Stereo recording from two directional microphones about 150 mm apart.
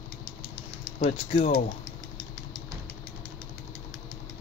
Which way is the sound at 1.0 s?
40° left (ahead or behind).